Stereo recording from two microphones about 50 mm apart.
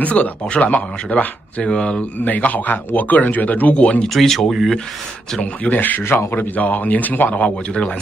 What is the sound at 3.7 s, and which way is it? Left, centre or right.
Speech, left.